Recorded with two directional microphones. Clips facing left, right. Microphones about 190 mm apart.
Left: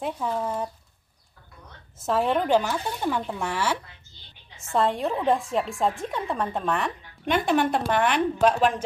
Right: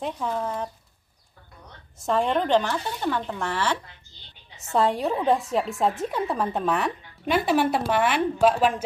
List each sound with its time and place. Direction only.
0.0 s speech: 5° left (ahead or behind)
2.0 s speech: 5° left (ahead or behind)
4.7 s a woman's voice: centre (ahead or behind)